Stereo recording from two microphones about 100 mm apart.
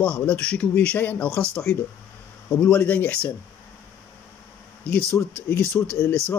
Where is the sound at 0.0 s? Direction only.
10° left (ahead or behind).